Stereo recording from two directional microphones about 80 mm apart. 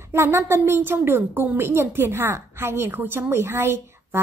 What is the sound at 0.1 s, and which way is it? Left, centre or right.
A woman's voice, right.